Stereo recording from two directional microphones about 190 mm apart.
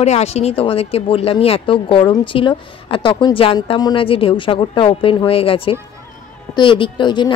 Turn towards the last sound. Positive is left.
turn(degrees=25)  # may be behind; listen again after turning